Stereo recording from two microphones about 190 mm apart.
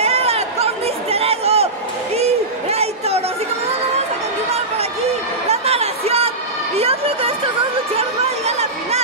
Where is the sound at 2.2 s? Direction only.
35° right (ahead or behind).